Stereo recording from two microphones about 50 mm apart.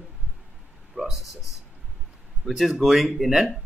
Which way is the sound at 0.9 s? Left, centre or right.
Centre.